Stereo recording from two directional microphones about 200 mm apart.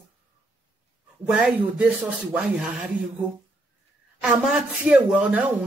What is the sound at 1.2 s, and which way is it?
Speech, 5° right (ahead or behind).